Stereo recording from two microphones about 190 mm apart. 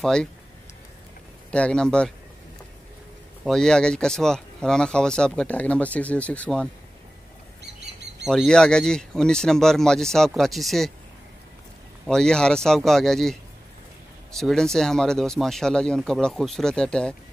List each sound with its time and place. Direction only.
0.0 s speech: 5° left (ahead or behind)
1.5 s speech: 5° left (ahead or behind)
3.4 s speech: 5° left (ahead or behind)
7.6 s bird: 65° right (ahead or behind)
8.3 s speech: centre (ahead or behind)
12.1 s speech: 5° left (ahead or behind)